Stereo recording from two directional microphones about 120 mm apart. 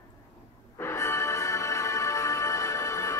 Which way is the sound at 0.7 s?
25° left (ahead or behind).